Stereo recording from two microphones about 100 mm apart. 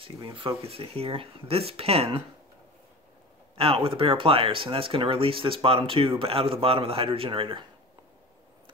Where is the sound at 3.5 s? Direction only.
65° right (ahead or behind).